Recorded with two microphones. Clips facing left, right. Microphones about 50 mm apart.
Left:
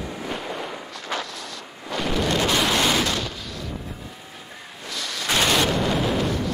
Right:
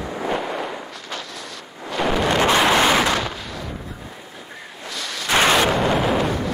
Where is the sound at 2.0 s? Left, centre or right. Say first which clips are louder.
Right 4 dB; right.